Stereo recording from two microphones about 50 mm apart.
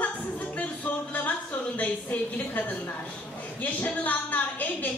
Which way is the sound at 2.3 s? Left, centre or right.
Left.